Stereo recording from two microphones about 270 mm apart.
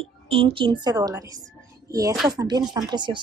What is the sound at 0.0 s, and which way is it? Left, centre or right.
Speech, centre.